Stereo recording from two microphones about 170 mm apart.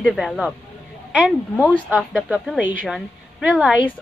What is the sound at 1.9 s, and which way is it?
A woman's voice, 5° right (ahead or behind).